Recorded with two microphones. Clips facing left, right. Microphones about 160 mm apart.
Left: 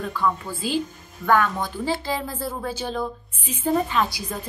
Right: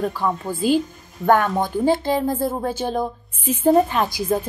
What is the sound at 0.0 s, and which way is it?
A woman's voice, 40° right (ahead or behind).